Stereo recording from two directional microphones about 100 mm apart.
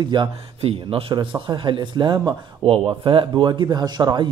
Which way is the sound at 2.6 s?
60° right (ahead or behind).